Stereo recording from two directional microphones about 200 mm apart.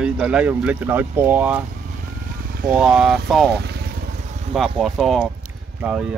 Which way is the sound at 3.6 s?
55° right (ahead or behind).